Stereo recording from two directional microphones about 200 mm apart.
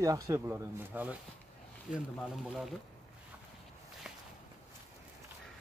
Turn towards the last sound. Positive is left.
turn(degrees=-5)  # may be behind; listen again after turning